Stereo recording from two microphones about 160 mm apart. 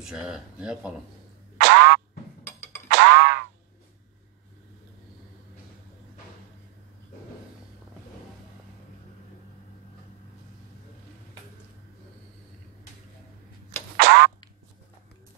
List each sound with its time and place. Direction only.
0.0 s speech: 5° right (ahead or behind)
1.6 s music: 75° right (ahead or behind)
2.4 s music: 15° left (ahead or behind)
2.9 s boing: 80° right
13.9 s a sound: 85° right